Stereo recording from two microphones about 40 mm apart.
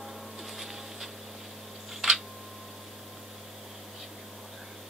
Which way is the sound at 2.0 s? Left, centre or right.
Centre.